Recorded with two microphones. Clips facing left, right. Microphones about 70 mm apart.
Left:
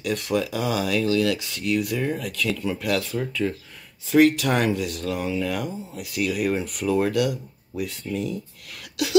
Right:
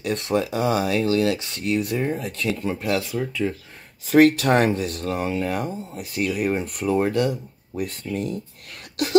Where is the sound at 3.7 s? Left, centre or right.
Right.